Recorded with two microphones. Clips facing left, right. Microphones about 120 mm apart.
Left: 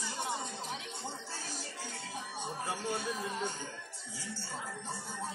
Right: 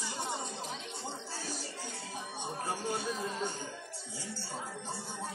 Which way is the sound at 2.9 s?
10° right (ahead or behind).